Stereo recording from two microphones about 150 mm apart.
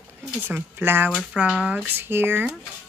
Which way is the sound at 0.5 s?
10° right (ahead or behind).